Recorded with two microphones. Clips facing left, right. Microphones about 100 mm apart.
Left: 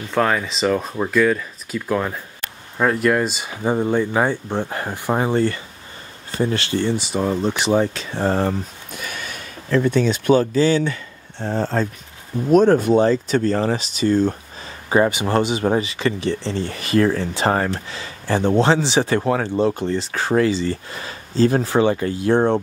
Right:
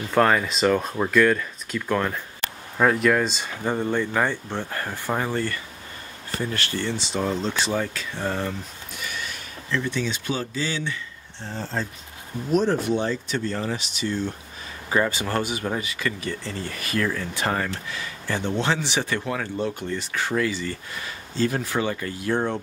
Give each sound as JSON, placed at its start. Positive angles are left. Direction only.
{"t": 0.1, "sound": "speech", "side_deg": 0}
{"t": 8.1, "sound": "speech", "side_deg": 35}
{"t": 9.7, "sound": "speech", "side_deg": 50}
{"t": 14.9, "sound": "speech", "side_deg": 20}